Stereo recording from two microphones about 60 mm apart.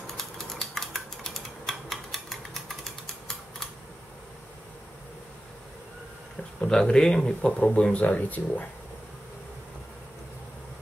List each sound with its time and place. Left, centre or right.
0.0 s typewriter: centre
6.7 s a man's voice: centre